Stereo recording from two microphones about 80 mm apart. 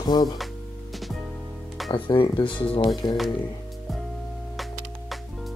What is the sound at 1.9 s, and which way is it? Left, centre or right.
Speech, left.